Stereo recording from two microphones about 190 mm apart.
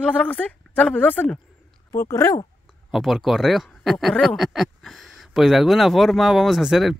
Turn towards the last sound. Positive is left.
turn(degrees=0)  # may be behind; listen again after turning